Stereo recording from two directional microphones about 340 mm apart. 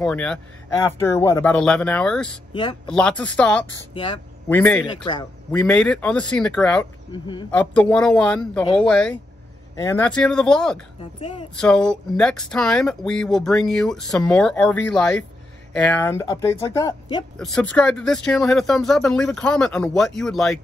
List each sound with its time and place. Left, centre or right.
0.0 s speech: centre
2.5 s speech: centre
2.9 s speech: centre
3.9 s speech: centre
5.5 s speech: centre
11.1 s speech: centre
11.5 s speech: centre